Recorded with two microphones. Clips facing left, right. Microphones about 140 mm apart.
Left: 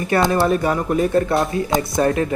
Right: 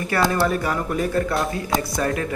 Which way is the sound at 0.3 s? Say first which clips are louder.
Left 4 dB; 25° left (ahead or behind).